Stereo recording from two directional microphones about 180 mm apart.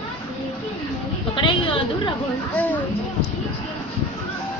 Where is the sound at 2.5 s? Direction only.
10° left (ahead or behind).